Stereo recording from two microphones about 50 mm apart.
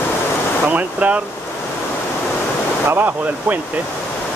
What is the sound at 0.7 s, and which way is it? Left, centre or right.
Speech, right.